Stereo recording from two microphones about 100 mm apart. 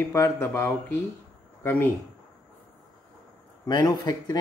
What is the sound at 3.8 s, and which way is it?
Speech, 45° left (ahead or behind).